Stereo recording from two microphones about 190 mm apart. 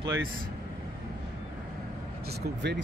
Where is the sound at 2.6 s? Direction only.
65° right (ahead or behind).